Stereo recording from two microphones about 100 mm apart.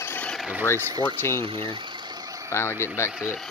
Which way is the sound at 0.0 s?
20° left (ahead or behind).